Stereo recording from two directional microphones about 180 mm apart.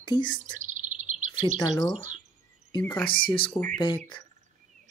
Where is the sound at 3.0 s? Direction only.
25° left (ahead or behind).